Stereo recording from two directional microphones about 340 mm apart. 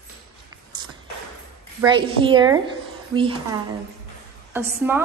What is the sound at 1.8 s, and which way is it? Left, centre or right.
A woman's voice, centre.